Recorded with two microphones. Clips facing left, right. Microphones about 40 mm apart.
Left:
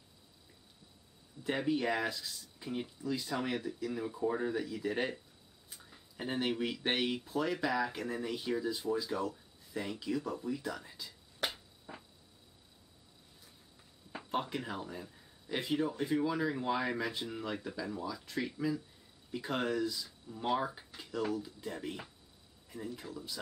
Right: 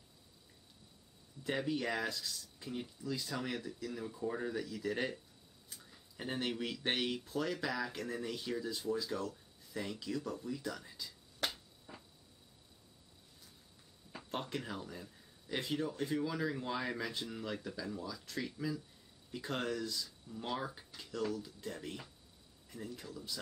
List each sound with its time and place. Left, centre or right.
1.4 s speech: centre
14.3 s speech: centre